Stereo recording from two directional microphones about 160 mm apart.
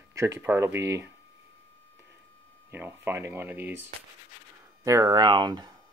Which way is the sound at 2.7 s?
10° right (ahead or behind).